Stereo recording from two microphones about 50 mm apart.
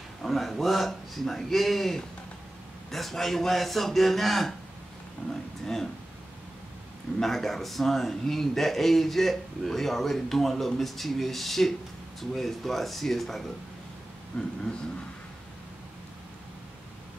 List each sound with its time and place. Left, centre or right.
0.2 s a man's voice: centre
7.2 s a man's voice: centre
14.3 s speech: left